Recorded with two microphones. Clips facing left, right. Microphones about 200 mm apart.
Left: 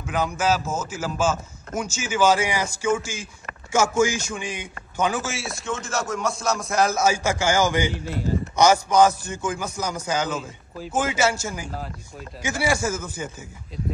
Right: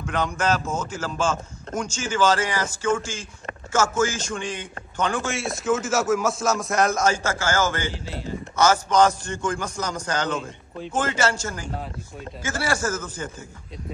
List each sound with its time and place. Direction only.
0.0 s a man's voice: 5° left (ahead or behind)
8.1 s speech: 45° left (ahead or behind)
8.5 s a man's voice: 15° left (ahead or behind)